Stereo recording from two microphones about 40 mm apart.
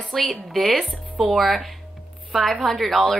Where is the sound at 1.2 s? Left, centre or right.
Centre.